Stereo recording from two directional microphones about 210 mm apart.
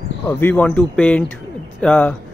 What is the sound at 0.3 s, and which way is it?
Speech, 10° left (ahead or behind).